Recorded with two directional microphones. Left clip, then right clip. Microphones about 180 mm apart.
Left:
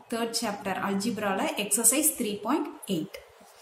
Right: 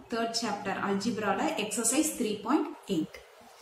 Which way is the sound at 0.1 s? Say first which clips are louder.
Left 1 dB; 45° left (ahead or behind).